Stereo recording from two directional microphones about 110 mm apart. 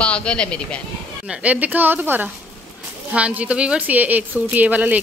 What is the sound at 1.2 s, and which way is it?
A woman's voice, 15° right (ahead or behind).